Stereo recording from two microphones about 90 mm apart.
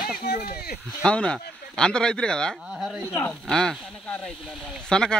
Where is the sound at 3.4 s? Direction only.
5° left (ahead or behind).